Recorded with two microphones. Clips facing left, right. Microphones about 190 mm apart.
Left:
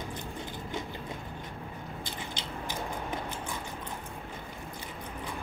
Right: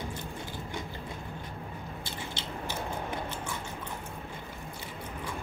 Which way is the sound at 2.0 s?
15° left (ahead or behind).